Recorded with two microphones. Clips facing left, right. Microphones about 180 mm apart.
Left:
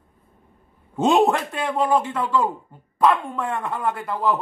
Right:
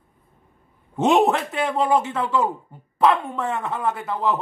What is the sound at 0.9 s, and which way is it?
Speech, centre (ahead or behind).